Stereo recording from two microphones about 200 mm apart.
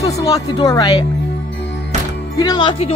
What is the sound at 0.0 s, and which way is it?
Speech, 15° left (ahead or behind).